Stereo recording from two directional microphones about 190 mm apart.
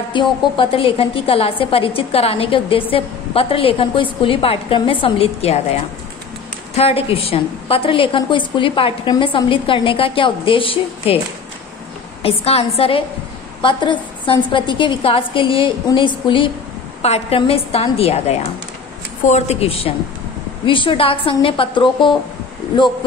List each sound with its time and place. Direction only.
0.1 s a woman's voice: 25° left (ahead or behind)
6.7 s a woman's voice: 30° left (ahead or behind)
12.2 s a woman's voice: 30° left (ahead or behind)